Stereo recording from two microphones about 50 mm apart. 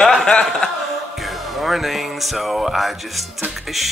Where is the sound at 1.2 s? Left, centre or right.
Centre.